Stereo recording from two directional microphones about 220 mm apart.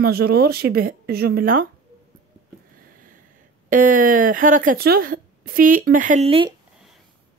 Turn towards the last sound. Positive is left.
turn(degrees=-25)  # may be behind; listen again after turning